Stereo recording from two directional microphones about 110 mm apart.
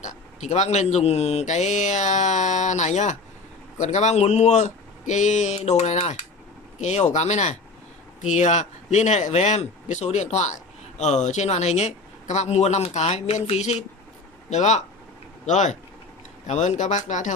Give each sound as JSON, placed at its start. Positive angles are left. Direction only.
{"t": 0.0, "sound": "speech", "side_deg": 90}